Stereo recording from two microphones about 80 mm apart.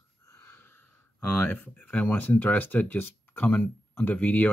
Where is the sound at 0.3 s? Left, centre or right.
Left.